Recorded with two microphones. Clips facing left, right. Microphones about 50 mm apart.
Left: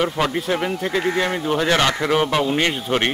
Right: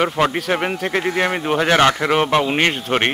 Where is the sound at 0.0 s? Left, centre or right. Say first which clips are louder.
Right 3 dB; right.